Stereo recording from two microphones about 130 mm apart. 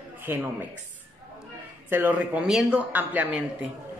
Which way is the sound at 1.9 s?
10° right (ahead or behind).